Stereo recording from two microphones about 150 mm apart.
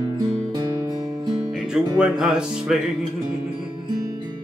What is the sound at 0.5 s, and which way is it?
Music, 25° right (ahead or behind).